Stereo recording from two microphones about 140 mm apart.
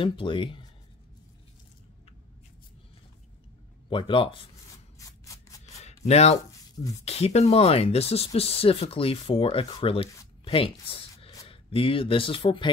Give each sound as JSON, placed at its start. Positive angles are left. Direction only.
{"t": 0.0, "sound": "speech", "side_deg": 35}
{"t": 3.9, "sound": "speech", "side_deg": 40}
{"t": 4.9, "sound": "scissors", "side_deg": 20}
{"t": 5.8, "sound": "a sound", "side_deg": 50}
{"t": 7.1, "sound": "speech", "side_deg": 50}